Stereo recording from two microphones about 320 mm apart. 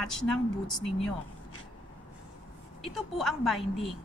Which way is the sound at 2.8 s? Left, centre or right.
Centre.